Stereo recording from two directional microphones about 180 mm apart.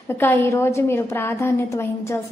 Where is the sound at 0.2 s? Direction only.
15° left (ahead or behind).